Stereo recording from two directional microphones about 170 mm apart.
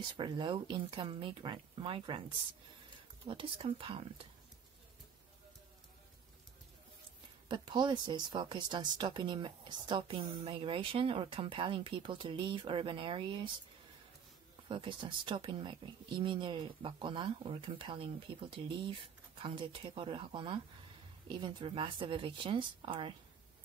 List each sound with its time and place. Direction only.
0.2 s speech: 25° right (ahead or behind)
7.4 s speech: 25° right (ahead or behind)
14.7 s speech: 30° right (ahead or behind)